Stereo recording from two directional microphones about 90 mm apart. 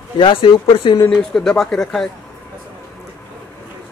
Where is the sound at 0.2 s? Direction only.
75° left (ahead or behind).